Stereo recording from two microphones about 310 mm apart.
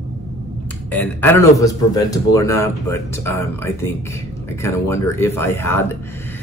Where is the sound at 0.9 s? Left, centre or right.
Centre.